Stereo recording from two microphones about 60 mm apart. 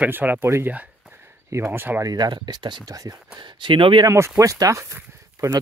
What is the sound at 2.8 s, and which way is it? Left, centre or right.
Speech, right.